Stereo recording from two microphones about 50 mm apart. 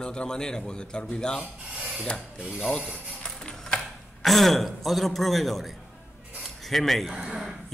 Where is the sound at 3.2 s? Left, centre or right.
Centre.